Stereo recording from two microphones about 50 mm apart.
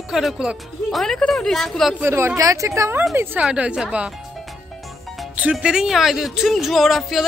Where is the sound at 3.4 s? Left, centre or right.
Right.